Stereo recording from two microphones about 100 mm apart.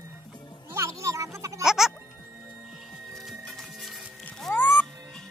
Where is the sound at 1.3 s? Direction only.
30° right (ahead or behind).